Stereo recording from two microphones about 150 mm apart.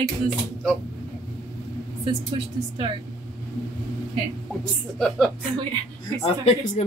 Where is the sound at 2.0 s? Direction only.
35° right (ahead or behind).